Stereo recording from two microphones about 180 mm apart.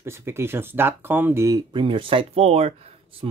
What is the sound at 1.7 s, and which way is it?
Speech, 30° right (ahead or behind).